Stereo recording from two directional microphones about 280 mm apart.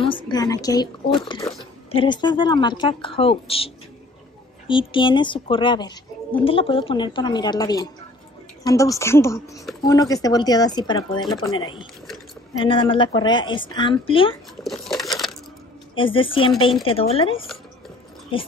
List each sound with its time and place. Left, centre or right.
0.1 s a woman's voice: centre
14.6 s crumpling: centre
15.9 s a woman's voice: centre